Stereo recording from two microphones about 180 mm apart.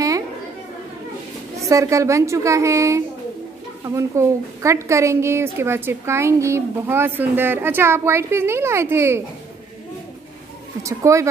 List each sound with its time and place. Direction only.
1.6 s a woman's voice: 15° right (ahead or behind)
10.8 s a woman's voice: 15° right (ahead or behind)